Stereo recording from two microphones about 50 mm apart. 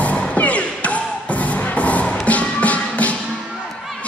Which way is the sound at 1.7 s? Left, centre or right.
Left.